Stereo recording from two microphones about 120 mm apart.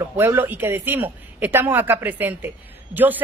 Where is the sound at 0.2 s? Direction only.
20° right (ahead or behind).